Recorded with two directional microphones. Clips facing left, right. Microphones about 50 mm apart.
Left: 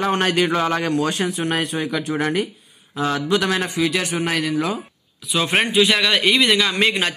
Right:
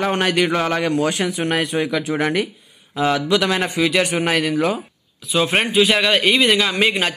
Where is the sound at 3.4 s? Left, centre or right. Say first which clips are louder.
Right 2 dB; right.